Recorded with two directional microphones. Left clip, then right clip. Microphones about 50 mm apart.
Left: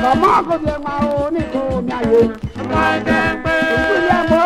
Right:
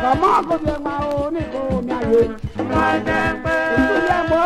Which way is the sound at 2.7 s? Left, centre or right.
Centre.